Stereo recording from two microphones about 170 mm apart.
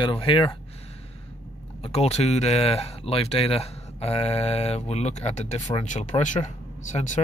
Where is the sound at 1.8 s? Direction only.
40° left (ahead or behind).